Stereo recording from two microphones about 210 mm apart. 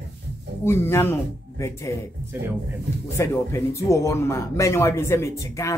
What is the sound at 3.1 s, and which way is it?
A man's voice, 15° left (ahead or behind).